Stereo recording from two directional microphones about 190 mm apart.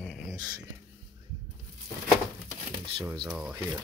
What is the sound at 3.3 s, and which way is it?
Speech, 5° right (ahead or behind).